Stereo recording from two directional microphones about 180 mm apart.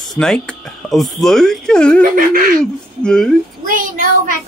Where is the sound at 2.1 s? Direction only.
50° right (ahead or behind).